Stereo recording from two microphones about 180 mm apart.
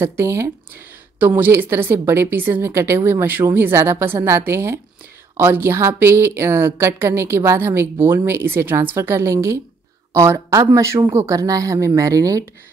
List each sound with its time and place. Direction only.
0.0 s a woman's voice: 15° right (ahead or behind)